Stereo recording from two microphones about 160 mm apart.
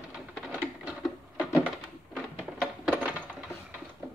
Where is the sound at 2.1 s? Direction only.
5° right (ahead or behind).